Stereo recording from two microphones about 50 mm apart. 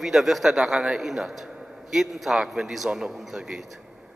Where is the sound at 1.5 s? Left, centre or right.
Centre.